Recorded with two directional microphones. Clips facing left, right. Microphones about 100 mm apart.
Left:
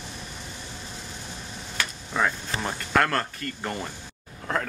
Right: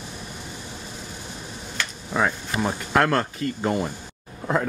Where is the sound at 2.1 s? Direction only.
10° right (ahead or behind).